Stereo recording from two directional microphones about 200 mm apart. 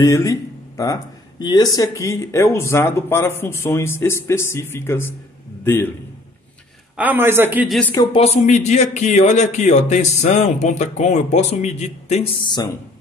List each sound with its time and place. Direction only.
0.0 s a sound: 15° left (ahead or behind)
1.4 s a man's voice: 20° left (ahead or behind)
7.0 s a man's voice: 10° right (ahead or behind)
7.9 s speech: 20° left (ahead or behind)
8.2 s a man's voice: 35° left (ahead or behind)